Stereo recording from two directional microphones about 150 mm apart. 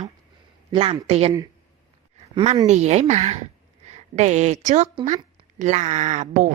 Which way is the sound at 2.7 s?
50° right (ahead or behind).